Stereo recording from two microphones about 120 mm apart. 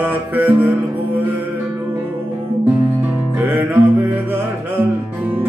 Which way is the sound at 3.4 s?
15° right (ahead or behind).